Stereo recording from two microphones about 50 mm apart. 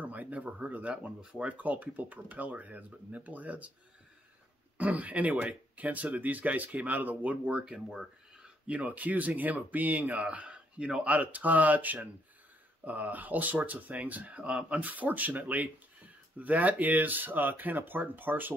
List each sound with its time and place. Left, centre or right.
0.0 s speech: right
4.7 s speech: right
7.6 s speech: centre
8.6 s speech: right
11.1 s speech: right
14.8 s speech: right